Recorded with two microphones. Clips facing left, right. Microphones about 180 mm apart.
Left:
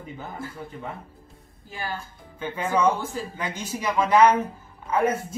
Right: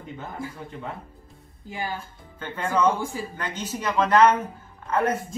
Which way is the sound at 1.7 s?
15° right (ahead or behind).